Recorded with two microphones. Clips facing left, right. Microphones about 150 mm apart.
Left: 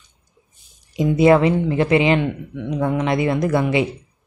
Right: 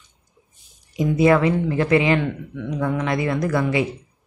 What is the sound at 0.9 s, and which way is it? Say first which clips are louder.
Speech: left 3 dB; 25° left (ahead or behind).